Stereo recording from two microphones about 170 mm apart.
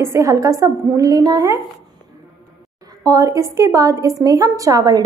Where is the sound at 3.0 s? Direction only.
20° right (ahead or behind).